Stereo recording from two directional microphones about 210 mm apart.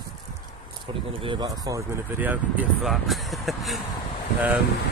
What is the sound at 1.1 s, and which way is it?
Speech, 20° right (ahead or behind).